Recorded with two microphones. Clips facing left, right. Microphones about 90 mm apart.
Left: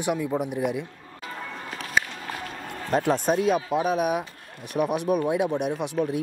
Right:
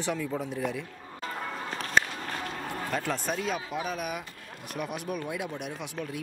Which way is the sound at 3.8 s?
50° left (ahead or behind).